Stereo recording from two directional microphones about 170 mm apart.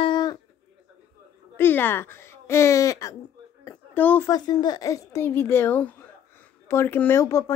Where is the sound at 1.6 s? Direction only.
10° left (ahead or behind).